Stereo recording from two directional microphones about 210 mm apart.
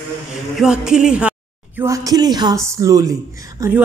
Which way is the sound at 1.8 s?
15° right (ahead or behind).